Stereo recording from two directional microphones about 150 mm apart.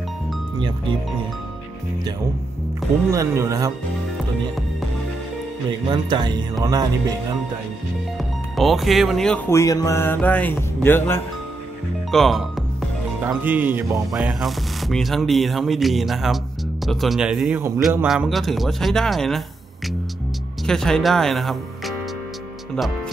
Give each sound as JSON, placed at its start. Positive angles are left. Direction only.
{"t": 0.6, "sound": "speech", "side_deg": -30}
{"t": 3.1, "sound": "speech", "side_deg": -20}
{"t": 5.9, "sound": "speech", "side_deg": -30}
{"t": 8.2, "sound": "speech", "side_deg": 0}
{"t": 9.5, "sound": "speech", "side_deg": 20}
{"t": 12.1, "sound": "speech", "side_deg": 0}
{"t": 13.2, "sound": "a man's voice", "side_deg": -10}
{"t": 14.1, "sound": "speech", "side_deg": -5}
{"t": 20.6, "sound": "speech", "side_deg": 5}